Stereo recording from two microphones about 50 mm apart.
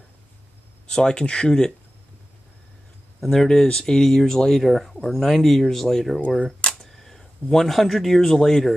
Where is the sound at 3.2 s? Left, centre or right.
Centre.